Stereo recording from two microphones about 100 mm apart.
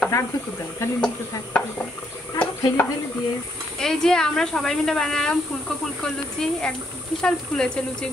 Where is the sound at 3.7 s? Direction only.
5° left (ahead or behind).